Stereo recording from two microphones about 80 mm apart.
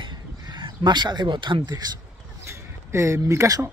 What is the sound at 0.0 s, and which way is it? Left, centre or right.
Crow, right.